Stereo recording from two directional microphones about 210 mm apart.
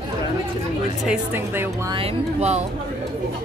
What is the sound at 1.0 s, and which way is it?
Speech, 5° right (ahead or behind).